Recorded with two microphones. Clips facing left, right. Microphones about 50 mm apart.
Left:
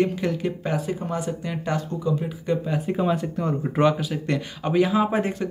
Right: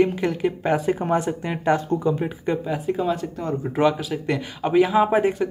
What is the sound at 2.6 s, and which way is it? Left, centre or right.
Speech, centre.